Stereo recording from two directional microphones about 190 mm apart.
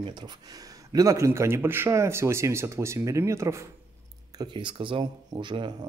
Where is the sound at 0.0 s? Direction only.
25° right (ahead or behind).